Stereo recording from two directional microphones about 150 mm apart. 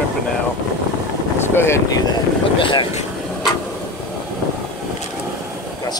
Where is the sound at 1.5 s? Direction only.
15° left (ahead or behind).